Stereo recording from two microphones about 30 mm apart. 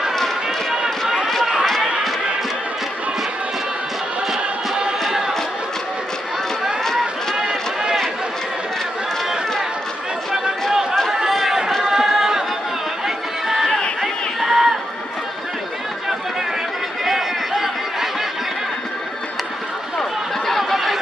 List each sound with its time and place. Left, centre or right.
1.4 s run: right
10.7 s chatter: centre
11.4 s run: centre
12.0 s a sound: centre
13.0 s music: centre
14.0 s a sound: centre
17.0 s chatter: centre
20.7 s chatter: centre